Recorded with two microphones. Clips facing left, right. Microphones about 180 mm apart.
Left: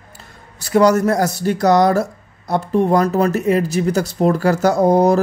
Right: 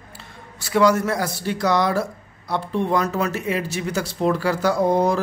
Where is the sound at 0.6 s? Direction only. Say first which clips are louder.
Left 4 dB; 40° left (ahead or behind).